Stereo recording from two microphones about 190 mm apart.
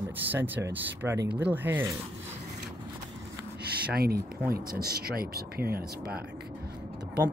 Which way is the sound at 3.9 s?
55° right (ahead or behind).